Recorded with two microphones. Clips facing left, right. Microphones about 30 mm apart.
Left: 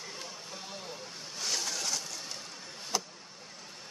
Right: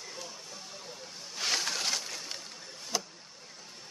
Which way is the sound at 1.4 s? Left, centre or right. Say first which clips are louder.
Right 3 dB; right.